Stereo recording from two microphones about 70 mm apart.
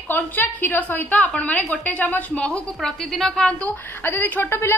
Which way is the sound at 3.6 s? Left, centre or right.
Left.